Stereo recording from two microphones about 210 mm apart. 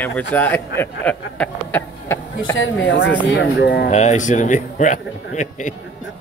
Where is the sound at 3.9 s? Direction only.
35° left (ahead or behind).